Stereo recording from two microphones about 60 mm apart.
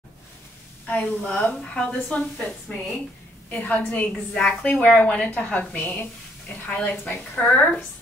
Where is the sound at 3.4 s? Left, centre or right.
Left.